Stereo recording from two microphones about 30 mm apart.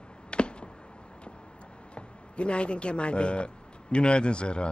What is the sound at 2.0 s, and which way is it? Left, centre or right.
Speech, left.